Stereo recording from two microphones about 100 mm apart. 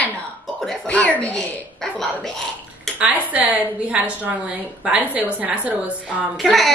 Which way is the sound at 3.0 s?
15° right (ahead or behind).